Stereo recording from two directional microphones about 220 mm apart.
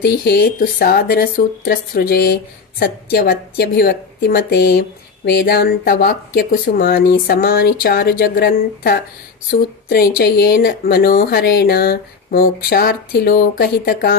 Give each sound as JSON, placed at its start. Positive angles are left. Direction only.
{"t": 0.0, "sound": "a woman's voice", "side_deg": 45}